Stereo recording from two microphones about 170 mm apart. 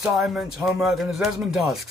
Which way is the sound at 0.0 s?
Centre (ahead or behind).